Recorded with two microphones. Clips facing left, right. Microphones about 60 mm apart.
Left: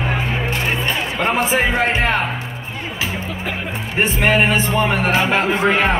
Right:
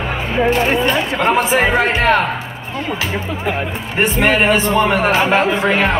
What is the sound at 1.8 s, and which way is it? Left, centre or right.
Speech, centre.